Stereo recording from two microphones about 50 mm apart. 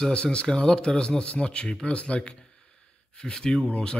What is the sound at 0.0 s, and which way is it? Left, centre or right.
Speech, left.